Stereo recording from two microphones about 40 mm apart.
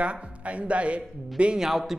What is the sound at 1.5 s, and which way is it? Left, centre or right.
Speech, centre.